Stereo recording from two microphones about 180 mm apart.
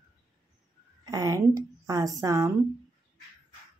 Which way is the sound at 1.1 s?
20° right (ahead or behind).